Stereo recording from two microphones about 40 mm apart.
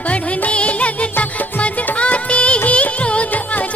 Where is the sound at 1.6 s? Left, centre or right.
Left.